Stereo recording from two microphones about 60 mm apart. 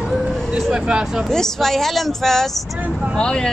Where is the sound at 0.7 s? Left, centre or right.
Centre.